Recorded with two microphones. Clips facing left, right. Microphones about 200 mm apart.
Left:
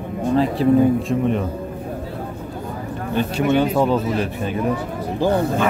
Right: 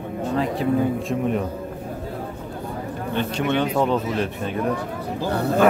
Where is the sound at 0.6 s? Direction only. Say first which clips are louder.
Left 7 dB; 35° left (ahead or behind).